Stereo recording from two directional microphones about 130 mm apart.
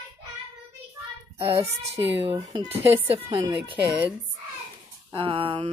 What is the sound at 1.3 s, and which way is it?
Speech, 50° right (ahead or behind).